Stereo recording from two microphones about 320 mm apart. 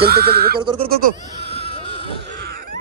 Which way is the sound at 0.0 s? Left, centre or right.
Right.